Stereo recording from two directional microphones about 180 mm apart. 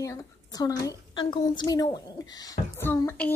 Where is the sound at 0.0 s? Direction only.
20° left (ahead or behind).